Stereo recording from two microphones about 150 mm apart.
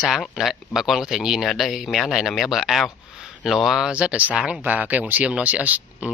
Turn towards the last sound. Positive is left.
turn(degrees=-10)  # may be behind; listen again after turning